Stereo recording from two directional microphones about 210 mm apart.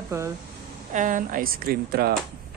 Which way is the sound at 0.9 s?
40° right (ahead or behind).